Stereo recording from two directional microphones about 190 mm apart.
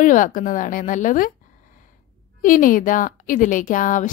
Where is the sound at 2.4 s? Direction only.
45° left (ahead or behind).